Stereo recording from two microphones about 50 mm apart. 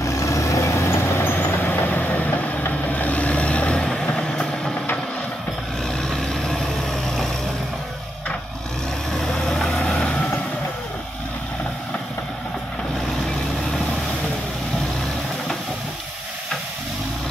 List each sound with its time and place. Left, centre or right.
0.0 s vehicle: left
0.8 s vehicle: left
1.6 s vehicle: left; by 4.7 s centre
6.0 s vehicle: centre
9.1 s vehicle: centre
9.9 s vehicle: left